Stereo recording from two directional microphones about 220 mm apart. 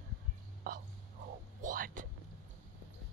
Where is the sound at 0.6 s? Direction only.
45° right (ahead or behind).